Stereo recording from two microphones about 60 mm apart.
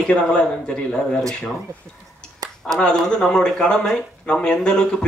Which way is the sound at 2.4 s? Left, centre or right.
Right.